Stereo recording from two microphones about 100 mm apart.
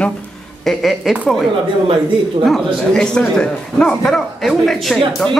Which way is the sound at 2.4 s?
5° left (ahead or behind).